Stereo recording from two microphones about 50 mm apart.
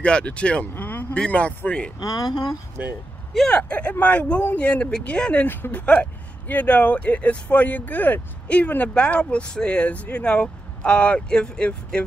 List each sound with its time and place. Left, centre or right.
0.0 s speech: left
0.7 s a sound: left
1.1 s speech: left
2.8 s speech: right
3.5 s speech: left